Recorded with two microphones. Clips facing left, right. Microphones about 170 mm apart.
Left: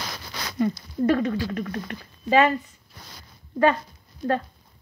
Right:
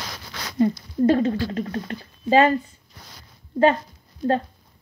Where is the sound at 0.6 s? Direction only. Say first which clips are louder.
Right 4 dB; 30° right (ahead or behind).